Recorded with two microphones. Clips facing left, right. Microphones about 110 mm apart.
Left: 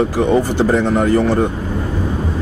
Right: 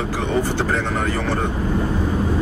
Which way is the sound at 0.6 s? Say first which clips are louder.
Left 7 dB; 15° left (ahead or behind).